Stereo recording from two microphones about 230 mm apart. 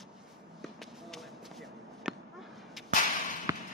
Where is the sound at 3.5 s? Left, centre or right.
Centre.